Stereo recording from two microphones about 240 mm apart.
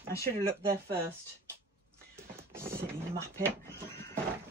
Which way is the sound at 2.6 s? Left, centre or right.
Centre.